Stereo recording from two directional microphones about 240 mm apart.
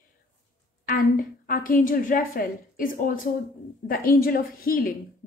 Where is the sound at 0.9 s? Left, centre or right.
Left.